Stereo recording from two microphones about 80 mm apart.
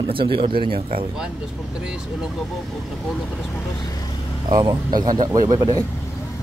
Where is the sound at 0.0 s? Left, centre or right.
Right.